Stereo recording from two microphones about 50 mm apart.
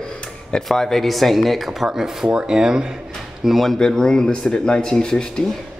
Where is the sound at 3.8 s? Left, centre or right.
Centre.